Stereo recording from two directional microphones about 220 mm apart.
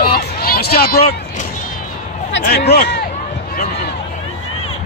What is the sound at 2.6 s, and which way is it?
Speech, 50° left (ahead or behind).